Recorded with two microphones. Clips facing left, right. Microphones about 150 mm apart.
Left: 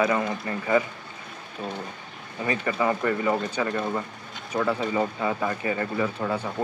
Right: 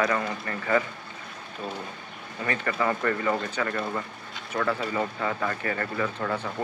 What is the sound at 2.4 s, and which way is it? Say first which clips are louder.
Speech: left 2 dB; 15° left (ahead or behind).